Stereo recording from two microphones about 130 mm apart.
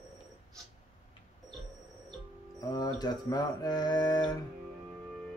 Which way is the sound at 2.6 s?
30° left (ahead or behind).